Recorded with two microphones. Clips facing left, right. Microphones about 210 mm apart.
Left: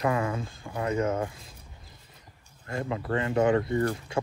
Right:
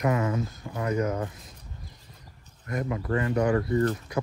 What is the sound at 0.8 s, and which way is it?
Speech, 25° left (ahead or behind).